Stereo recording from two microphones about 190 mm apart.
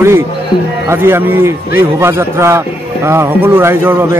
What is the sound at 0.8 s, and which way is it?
A man's voice, 10° right (ahead or behind).